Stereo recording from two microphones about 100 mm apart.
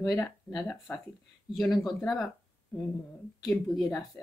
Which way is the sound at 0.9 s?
30° left (ahead or behind).